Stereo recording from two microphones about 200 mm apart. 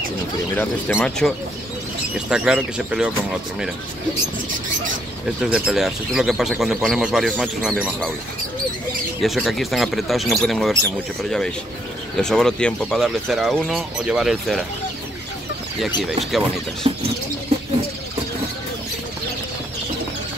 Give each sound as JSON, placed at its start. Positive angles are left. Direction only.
{"t": 0.6, "sound": "speech", "side_deg": 10}
{"t": 5.5, "sound": "speech", "side_deg": 0}
{"t": 9.2, "sound": "speech", "side_deg": 0}
{"t": 16.8, "sound": "bird", "side_deg": -25}